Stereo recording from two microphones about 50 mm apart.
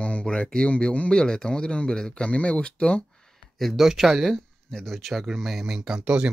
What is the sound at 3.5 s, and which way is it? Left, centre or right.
Speech, centre.